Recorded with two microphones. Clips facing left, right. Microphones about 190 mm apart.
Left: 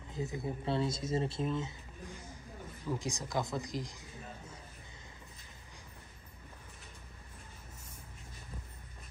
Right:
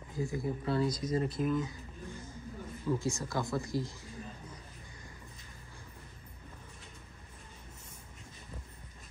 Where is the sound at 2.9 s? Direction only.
15° left (ahead or behind).